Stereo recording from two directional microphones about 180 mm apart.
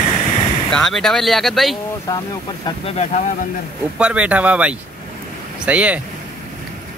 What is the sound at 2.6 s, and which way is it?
Speech, 35° left (ahead or behind).